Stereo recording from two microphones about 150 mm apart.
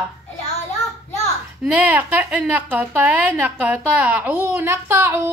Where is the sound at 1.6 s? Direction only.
10° right (ahead or behind).